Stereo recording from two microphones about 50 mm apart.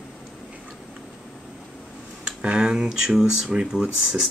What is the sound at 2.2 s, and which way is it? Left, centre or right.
Speech, centre.